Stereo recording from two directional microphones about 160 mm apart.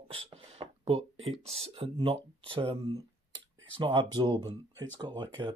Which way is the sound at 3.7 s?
30° right (ahead or behind).